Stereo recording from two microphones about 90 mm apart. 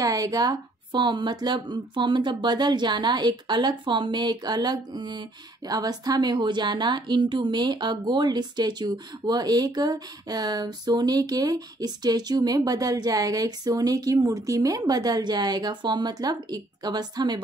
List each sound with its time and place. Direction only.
0.0 s a woman's voice: 40° right (ahead or behind)
0.9 s a woman's voice: 60° right (ahead or behind)